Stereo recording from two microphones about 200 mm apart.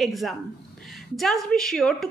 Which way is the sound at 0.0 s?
Centre (ahead or behind).